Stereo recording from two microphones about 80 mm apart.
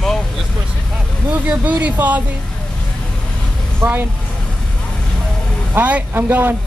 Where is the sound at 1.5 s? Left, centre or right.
Centre.